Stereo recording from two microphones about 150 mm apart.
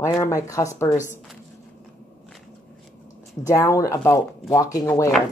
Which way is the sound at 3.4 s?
20° left (ahead or behind).